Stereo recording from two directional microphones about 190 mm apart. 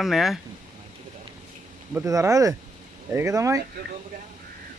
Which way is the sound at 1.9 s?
15° right (ahead or behind).